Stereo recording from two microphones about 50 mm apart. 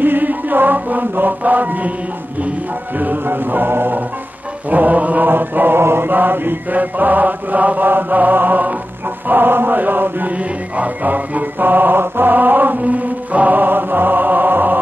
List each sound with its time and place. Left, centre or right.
0.0 s chant: right
3.0 s music: right
5.8 s chant: right
6.0 s music: right